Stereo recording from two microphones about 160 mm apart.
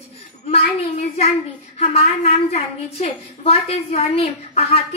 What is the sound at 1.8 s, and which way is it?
A woman's voice, 40° left (ahead or behind).